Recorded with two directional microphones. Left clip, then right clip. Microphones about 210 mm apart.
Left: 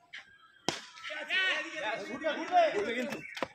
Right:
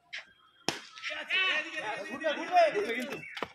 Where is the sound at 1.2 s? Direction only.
35° left (ahead or behind).